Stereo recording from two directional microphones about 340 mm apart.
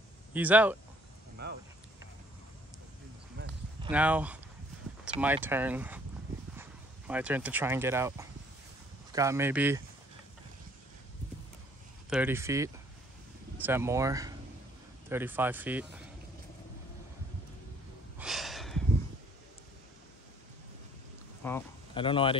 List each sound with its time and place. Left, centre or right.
0.3 s speech: centre
1.4 s speech: right
3.4 s basketball bounce: right
3.8 s speech: centre
12.1 s speech: centre
18.1 s a sound: centre
21.5 s speech: centre